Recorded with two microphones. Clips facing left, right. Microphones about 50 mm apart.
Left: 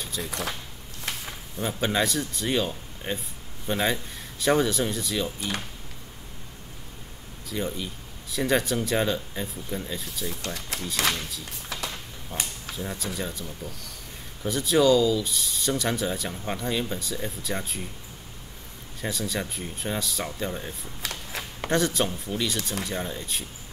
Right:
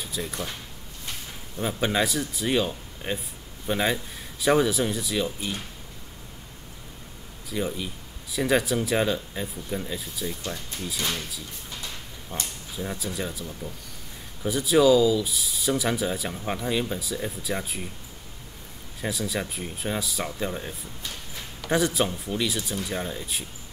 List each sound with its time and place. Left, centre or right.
0.0 s keys jangling: centre
0.3 s speech: left
1.1 s a sound: left
1.6 s speech: centre
7.4 s speech: centre
10.4 s speech: left
11.7 s a sound: left
12.7 s speech: centre
18.9 s speech: centre
21.0 s a sound: left
21.6 s speech: centre